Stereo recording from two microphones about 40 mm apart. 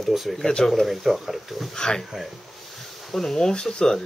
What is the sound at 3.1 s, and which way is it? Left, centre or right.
Speech, centre.